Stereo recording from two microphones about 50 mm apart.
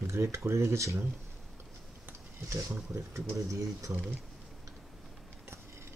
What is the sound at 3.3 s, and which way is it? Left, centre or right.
Speech, right.